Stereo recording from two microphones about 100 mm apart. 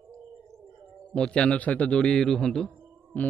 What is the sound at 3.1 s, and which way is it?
Speech, 15° left (ahead or behind).